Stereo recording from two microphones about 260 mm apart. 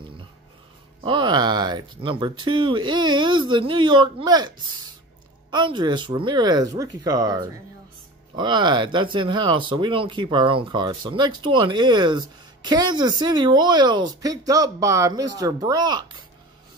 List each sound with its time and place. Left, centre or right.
1.0 s speech: centre